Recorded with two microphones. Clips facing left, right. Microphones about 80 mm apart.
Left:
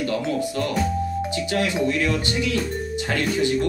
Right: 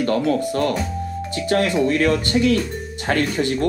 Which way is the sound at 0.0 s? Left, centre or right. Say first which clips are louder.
Right 5 dB; right.